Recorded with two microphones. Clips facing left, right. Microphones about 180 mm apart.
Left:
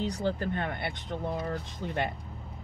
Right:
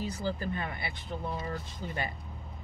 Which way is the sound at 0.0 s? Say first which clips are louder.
Left 4 dB; 70° left (ahead or behind).